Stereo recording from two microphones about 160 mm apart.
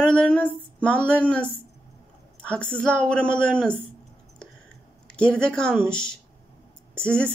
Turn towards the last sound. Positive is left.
turn(degrees=5)  # may be behind; listen again after turning